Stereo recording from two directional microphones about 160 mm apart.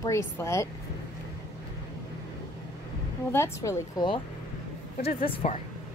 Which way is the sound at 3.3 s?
20° left (ahead or behind).